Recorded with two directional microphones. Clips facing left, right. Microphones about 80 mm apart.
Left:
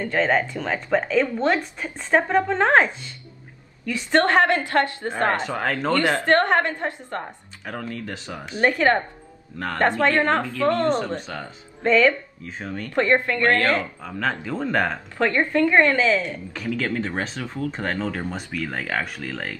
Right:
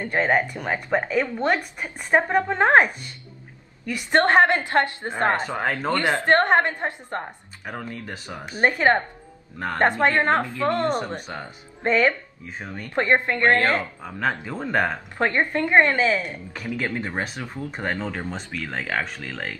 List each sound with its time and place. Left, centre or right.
0.0 s a woman's voice: centre
12.4 s speech: centre
12.9 s a woman's voice: right
14.0 s speech: centre
15.1 s a woman's voice: right; by 18.2 s centre
18.2 s speech: centre